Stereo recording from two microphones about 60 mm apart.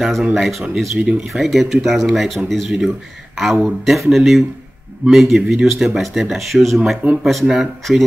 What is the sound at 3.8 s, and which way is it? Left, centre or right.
Speech, centre.